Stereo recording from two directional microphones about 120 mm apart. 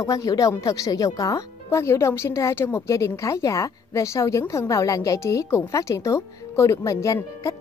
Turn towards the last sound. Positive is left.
turn(degrees=25)  # may be behind; listen again after turning